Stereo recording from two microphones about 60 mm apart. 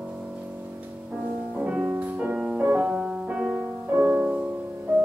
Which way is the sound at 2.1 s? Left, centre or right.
Right.